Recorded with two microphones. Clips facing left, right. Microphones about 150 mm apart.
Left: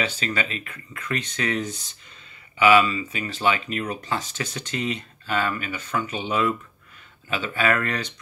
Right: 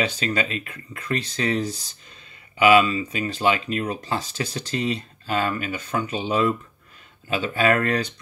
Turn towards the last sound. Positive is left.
turn(degrees=-35)  # may be behind; listen again after turning